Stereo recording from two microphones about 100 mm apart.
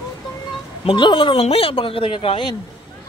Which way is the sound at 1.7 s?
65° left (ahead or behind).